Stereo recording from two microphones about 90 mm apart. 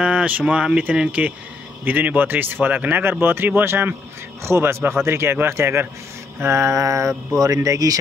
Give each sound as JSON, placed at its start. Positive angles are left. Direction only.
{"t": 0.0, "sound": "speech", "side_deg": -15}